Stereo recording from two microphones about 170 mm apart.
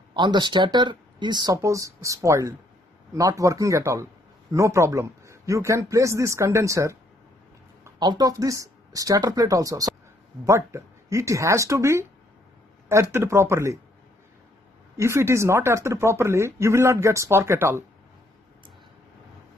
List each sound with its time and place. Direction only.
0.1 s speech: 25° right (ahead or behind)
13.1 s speech: 15° right (ahead or behind)
15.0 s speech: 15° right (ahead or behind)